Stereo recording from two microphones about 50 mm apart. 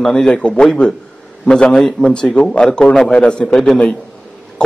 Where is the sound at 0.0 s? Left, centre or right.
Centre.